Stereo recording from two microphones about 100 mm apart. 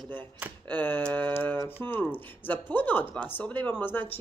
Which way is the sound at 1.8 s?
20° left (ahead or behind).